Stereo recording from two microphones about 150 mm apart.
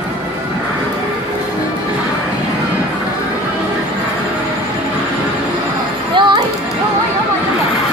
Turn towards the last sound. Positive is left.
turn(degrees=-30)  # may be behind; listen again after turning